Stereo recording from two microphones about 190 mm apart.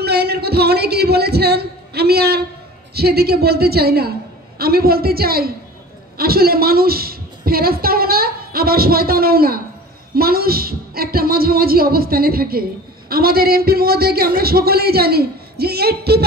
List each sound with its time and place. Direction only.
0.0 s a man's voice: 60° right (ahead or behind)